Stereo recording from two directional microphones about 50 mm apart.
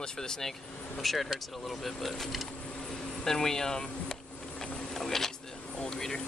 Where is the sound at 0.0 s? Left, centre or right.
Centre.